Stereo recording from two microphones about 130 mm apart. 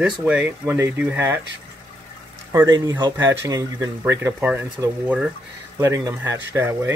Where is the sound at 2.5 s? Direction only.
20° right (ahead or behind).